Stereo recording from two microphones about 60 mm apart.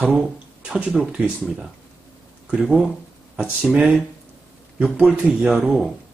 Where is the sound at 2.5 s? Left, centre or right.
Centre.